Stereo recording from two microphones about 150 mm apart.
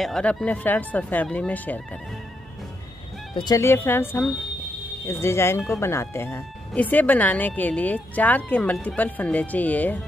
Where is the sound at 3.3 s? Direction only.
25° left (ahead or behind).